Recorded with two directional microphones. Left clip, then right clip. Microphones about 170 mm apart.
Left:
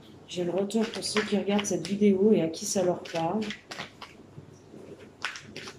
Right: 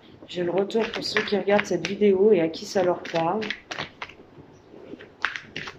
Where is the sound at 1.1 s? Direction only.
25° right (ahead or behind).